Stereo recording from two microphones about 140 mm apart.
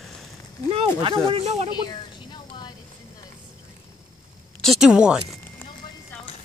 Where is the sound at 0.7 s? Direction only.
40° right (ahead or behind).